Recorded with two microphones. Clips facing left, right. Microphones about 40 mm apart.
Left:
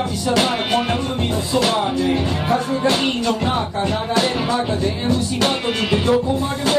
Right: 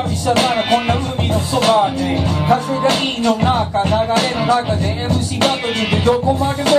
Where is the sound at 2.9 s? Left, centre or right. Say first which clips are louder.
Right 3 dB; right.